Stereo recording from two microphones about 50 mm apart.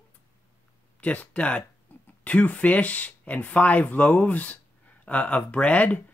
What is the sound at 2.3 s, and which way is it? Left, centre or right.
Speech, left.